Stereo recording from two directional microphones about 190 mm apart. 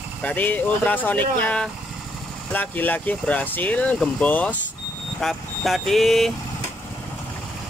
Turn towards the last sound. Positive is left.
turn(degrees=0)  # may be behind; listen again after turning